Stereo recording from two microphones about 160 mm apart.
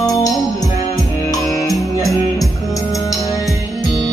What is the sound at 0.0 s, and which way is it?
Music, 25° left (ahead or behind).